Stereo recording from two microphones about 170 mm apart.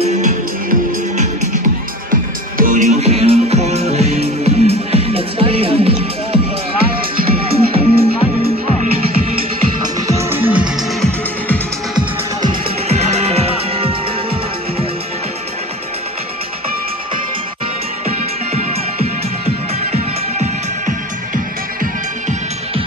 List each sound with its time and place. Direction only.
2.5 s music: 55° right (ahead or behind); by 6.4 s 35° right (ahead or behind)
7.5 s music: 35° right (ahead or behind)
10.3 s music: 10° right (ahead or behind)
12.8 s music: 40° right (ahead or behind)
19.9 s music: 45° right (ahead or behind)